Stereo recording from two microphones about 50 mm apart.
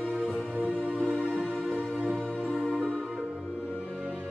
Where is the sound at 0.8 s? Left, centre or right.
Left.